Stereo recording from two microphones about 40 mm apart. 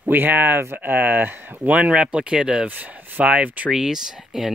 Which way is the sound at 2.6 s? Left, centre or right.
Right.